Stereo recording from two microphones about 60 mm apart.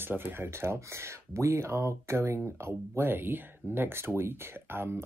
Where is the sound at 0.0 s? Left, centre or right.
Right.